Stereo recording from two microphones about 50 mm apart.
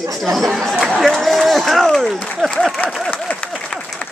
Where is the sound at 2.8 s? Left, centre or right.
Left.